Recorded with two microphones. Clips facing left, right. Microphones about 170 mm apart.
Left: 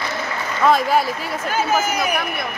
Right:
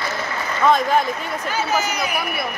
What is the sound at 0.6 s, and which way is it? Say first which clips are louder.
Speech: left 1 dB; 5° left (ahead or behind).